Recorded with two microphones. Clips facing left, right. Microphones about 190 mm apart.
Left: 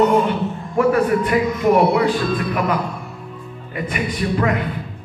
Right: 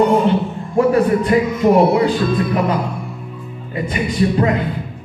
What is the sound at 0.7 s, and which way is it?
Speech, 25° right (ahead or behind).